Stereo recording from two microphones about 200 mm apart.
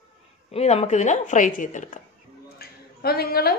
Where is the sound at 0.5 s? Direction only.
30° left (ahead or behind).